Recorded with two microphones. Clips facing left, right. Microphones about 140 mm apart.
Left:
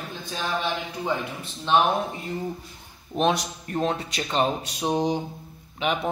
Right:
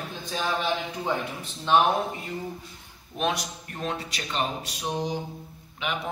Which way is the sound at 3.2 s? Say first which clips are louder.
Left 5 dB; 30° left (ahead or behind).